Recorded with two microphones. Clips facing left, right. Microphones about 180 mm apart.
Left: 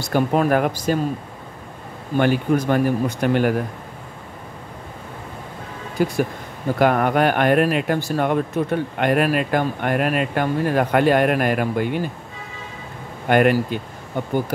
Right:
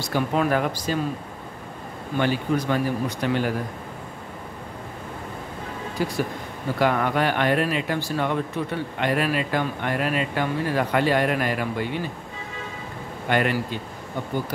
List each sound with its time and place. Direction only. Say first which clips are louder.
0.1 s speech: left 5 dB; 50° left (ahead or behind)
2.1 s speech: left 5 dB; 55° left (ahead or behind)
6.0 s speech: left 6 dB; 50° left (ahead or behind)
13.3 s speech: left 7 dB; 50° left (ahead or behind)